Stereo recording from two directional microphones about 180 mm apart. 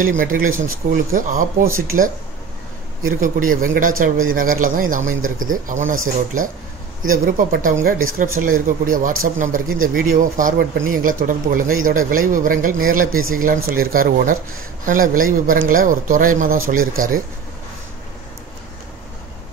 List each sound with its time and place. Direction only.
0.2 s speech: 50° right (ahead or behind)